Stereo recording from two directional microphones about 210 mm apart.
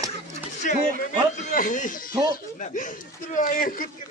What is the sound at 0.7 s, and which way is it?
Speech, 40° left (ahead or behind).